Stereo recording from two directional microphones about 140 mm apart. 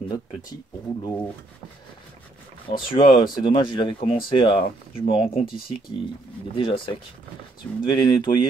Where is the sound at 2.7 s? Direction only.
35° left (ahead or behind).